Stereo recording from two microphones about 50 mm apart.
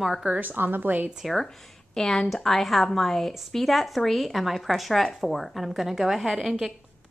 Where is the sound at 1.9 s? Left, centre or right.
Centre.